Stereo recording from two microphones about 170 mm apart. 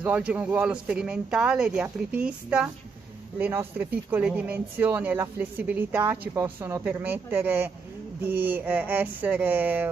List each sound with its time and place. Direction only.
0.0 s speech: 10° right (ahead or behind)